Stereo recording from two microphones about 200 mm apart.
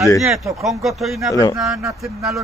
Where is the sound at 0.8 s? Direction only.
Centre (ahead or behind).